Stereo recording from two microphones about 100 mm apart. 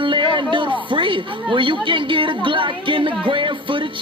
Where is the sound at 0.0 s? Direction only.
55° right (ahead or behind).